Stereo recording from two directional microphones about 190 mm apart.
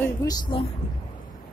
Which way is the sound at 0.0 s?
20° left (ahead or behind).